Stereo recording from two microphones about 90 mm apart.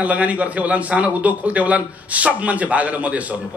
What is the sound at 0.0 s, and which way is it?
A man's voice, 15° right (ahead or behind).